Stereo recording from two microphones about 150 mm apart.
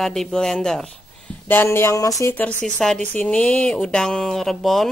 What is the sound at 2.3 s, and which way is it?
Speech, 5° left (ahead or behind).